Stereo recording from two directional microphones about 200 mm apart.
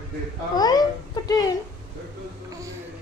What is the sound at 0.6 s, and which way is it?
Speech, 20° left (ahead or behind).